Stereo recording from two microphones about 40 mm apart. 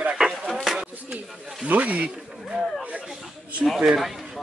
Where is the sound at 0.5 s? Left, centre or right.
Centre.